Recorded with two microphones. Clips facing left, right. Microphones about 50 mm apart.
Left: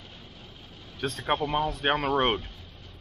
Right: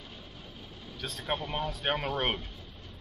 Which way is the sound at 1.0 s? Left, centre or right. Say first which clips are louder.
Left 8 dB; left.